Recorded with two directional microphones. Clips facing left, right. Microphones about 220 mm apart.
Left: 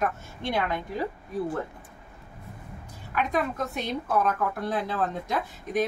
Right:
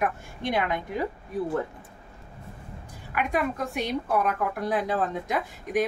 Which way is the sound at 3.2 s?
10° right (ahead or behind).